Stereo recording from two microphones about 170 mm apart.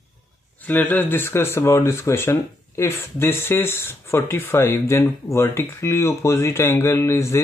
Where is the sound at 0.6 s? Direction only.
10° left (ahead or behind).